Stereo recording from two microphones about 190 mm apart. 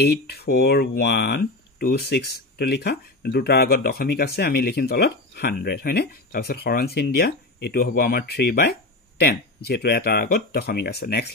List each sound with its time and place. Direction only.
0.0 s speech: 60° left (ahead or behind)